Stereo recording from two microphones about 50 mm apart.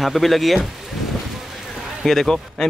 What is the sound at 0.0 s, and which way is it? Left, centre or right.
Speech, centre.